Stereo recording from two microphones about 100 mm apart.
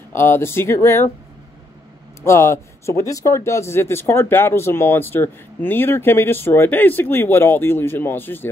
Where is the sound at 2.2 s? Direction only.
30° left (ahead or behind).